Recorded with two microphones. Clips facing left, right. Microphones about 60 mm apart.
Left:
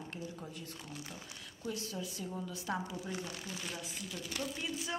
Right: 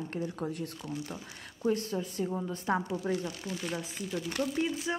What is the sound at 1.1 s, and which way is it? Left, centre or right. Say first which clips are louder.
A woman's voice: right 6 dB; right.